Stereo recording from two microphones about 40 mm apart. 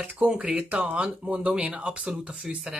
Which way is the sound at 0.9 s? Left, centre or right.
Right.